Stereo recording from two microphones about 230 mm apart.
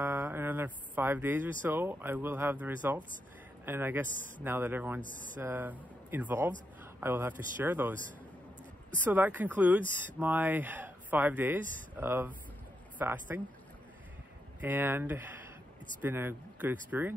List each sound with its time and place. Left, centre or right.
0.0 s speech: centre
5.1 s speech: right
5.4 s speech: centre
8.9 s speech: centre
14.6 s speech: centre